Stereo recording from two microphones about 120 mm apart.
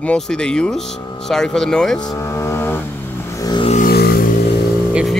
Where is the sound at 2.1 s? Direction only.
25° left (ahead or behind).